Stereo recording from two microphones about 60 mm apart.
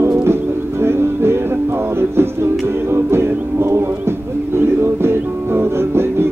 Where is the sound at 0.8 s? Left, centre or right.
Right.